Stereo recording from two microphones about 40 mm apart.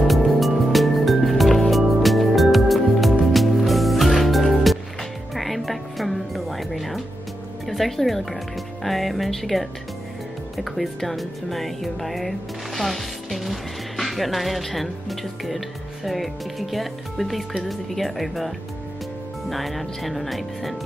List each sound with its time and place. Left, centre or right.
0.3 s music: centre
8.8 s speech: centre
19.5 s speech: centre